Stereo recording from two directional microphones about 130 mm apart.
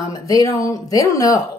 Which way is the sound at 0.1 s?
25° left (ahead or behind).